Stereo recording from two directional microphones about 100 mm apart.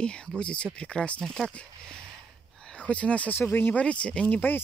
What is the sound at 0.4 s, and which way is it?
Speech, 10° left (ahead or behind).